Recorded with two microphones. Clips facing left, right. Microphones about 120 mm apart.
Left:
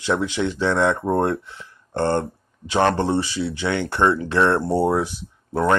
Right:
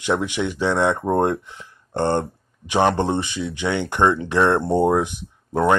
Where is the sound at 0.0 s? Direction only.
15° right (ahead or behind).